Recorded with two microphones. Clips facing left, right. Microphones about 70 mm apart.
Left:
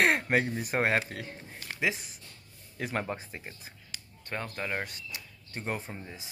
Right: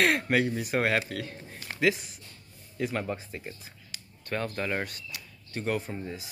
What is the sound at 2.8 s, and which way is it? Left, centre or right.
Speech, left.